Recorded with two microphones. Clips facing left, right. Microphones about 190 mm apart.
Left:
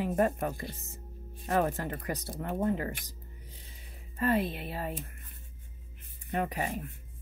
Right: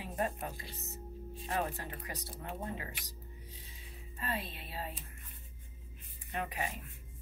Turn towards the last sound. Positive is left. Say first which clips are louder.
# left 6 dB
turn(degrees=45)  # may be behind; listen again after turning